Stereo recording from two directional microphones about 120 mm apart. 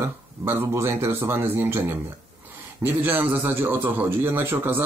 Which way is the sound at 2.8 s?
15° right (ahead or behind).